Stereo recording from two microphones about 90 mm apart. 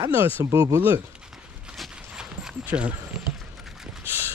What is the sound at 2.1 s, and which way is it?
Clip-clop, 5° right (ahead or behind).